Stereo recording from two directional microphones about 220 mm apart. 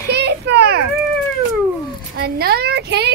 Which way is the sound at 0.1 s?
50° right (ahead or behind).